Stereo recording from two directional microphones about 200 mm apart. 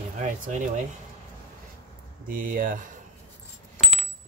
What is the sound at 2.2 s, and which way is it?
Speech, 45° right (ahead or behind).